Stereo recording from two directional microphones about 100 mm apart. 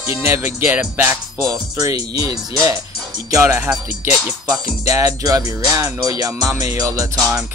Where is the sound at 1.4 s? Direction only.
35° right (ahead or behind).